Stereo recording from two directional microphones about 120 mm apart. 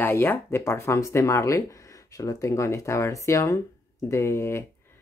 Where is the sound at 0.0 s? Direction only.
20° left (ahead or behind).